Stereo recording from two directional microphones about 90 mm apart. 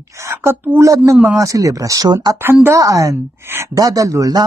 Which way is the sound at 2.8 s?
40° right (ahead or behind).